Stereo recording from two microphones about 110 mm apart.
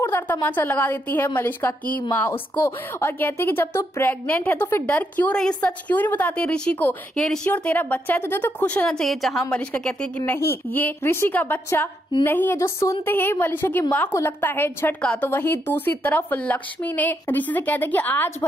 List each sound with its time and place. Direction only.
0.0 s a woman's voice: 15° left (ahead or behind)
3.0 s a woman's voice: 20° left (ahead or behind); by 7.5 s 5° left (ahead or behind)
7.5 s a woman's voice: 15° left (ahead or behind)
9.5 s speech: 15° left (ahead or behind)
15.0 s a woman's voice: 10° left (ahead or behind)